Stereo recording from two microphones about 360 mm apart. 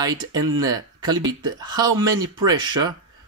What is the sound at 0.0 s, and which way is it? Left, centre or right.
Speech, centre.